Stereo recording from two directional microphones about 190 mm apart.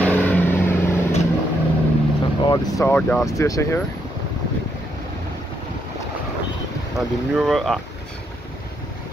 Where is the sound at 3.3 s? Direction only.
15° left (ahead or behind).